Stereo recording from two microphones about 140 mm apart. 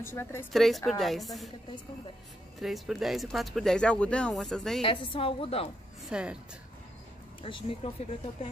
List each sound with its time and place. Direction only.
0.0 s a woman's voice: 15° left (ahead or behind)
0.5 s speech: centre (ahead or behind)
2.6 s speech: centre (ahead or behind)
4.8 s a woman's voice: 40° left (ahead or behind)
6.0 s a woman's voice: 5° right (ahead or behind)
7.4 s a woman's voice: 35° left (ahead or behind)